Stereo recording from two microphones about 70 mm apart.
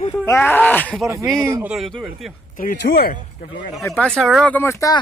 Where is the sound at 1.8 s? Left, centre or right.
Centre.